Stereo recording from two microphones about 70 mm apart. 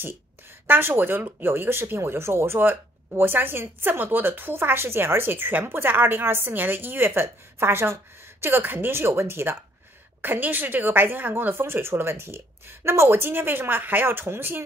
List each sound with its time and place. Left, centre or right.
0.7 s speech: right